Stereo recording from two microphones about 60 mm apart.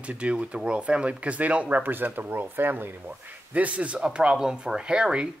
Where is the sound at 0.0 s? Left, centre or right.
Centre.